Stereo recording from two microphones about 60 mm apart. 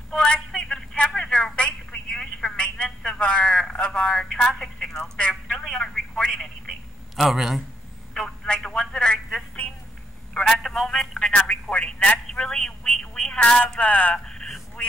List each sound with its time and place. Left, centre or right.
0.1 s speech: centre
0.5 s a sound: centre
0.9 s telephone: centre
2.5 s speech: centre
7.2 s a man's voice: centre
8.1 s telephone: centre
10.3 s telephone: centre
11.1 s speech: centre
12.8 s a sound: centre
13.7 s speech: left
14.2 s a sound: centre